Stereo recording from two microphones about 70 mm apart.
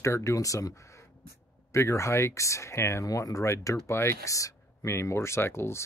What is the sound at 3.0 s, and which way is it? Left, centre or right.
Speech, left.